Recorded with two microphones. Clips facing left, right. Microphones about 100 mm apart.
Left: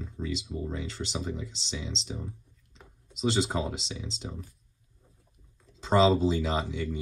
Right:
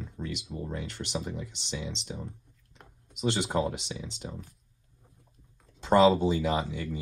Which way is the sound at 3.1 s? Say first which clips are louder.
Even; 90° left.